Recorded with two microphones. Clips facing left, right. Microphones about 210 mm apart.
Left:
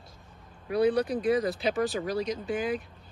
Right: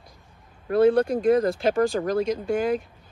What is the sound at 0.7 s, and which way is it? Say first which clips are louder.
Speech: right 6 dB; 50° right (ahead or behind).